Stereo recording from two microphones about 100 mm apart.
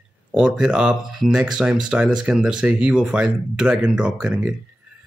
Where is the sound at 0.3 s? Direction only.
10° right (ahead or behind).